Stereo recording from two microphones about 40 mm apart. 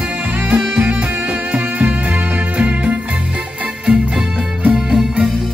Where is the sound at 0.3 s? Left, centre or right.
Right.